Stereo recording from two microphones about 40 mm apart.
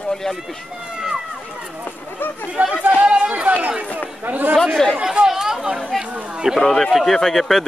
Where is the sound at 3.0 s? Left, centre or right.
Right.